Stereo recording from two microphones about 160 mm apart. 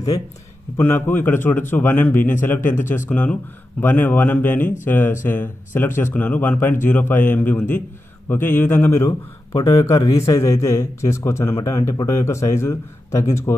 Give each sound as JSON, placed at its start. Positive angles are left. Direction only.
{"t": 0.7, "sound": "a man's voice", "side_deg": 15}
{"t": 9.5, "sound": "a man's voice", "side_deg": 25}